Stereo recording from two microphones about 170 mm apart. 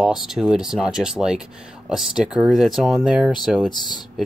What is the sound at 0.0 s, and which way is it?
Speech, centre (ahead or behind).